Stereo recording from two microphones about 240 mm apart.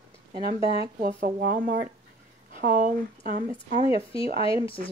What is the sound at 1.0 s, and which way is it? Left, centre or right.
Speech, right.